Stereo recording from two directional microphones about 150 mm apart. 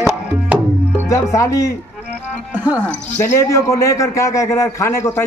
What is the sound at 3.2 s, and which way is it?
A man's voice, 20° left (ahead or behind).